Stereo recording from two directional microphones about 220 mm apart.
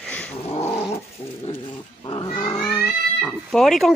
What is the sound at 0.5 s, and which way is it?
Growling, 30° left (ahead or behind).